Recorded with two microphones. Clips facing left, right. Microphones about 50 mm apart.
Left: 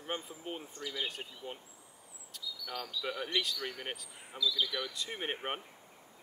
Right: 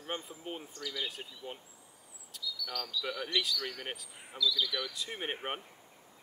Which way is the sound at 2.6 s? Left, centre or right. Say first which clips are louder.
Even; centre.